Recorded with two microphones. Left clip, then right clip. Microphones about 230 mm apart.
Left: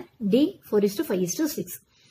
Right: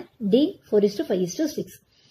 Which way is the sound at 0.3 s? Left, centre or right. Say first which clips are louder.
Right 2 dB; centre.